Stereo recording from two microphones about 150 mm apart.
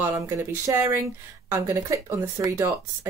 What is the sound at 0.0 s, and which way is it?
Speech, 15° right (ahead or behind).